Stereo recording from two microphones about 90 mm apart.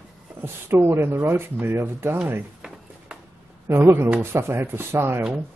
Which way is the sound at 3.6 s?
25° right (ahead or behind).